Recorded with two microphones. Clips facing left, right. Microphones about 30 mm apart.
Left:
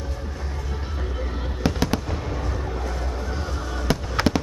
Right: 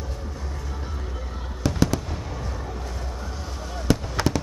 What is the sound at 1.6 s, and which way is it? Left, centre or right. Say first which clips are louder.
Fireworks: even; left.